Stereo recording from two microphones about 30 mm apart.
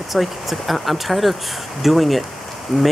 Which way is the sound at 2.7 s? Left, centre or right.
Centre.